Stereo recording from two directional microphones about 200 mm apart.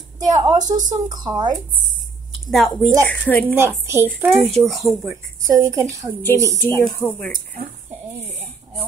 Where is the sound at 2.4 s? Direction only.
Centre (ahead or behind).